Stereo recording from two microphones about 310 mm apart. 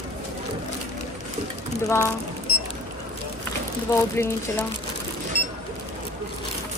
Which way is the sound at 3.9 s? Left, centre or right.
Centre.